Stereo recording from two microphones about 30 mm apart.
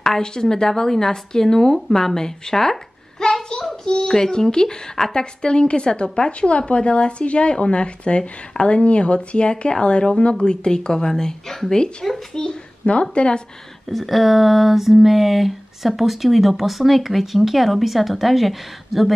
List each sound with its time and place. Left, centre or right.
0.2 s speech: left
3.8 s speech: left
6.4 s speech: left; by 11.7 s centre
11.7 s speech: left
13.8 s a sound: centre